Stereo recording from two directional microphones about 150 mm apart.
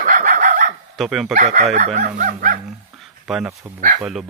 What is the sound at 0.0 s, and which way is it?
Chicken, 65° right (ahead or behind).